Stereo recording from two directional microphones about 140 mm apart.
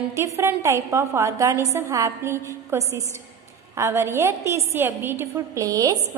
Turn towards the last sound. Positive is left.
turn(degrees=-25)  # may be behind; listen again after turning